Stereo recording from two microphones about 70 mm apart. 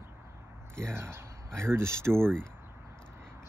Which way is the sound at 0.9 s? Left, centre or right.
Right.